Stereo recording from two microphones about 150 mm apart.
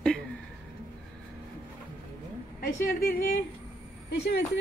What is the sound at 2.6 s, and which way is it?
Speech, 85° left.